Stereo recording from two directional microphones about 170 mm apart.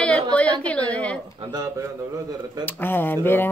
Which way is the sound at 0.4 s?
10° left (ahead or behind).